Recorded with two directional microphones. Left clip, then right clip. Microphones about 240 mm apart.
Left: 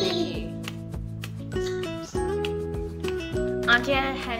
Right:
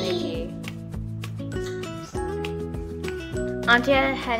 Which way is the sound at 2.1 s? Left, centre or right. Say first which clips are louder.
Left 2 dB; centre.